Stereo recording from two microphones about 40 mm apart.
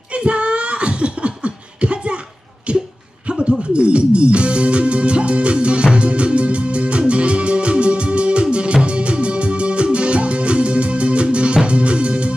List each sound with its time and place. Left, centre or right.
0.1 s beatboxing: right
2.7 s a sound: right
3.7 s music: right